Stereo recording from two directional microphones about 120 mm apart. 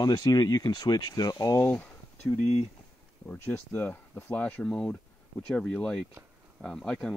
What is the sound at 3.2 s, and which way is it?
Speech, 20° left (ahead or behind).